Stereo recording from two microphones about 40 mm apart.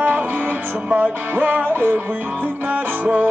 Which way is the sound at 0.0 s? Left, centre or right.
Right.